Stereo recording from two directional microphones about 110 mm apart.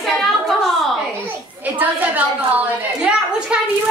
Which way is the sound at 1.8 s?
15° right (ahead or behind).